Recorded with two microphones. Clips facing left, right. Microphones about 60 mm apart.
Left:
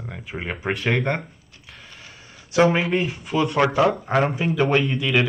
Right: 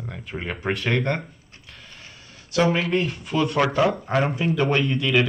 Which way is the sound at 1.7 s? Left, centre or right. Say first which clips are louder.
Left 2 dB; centre.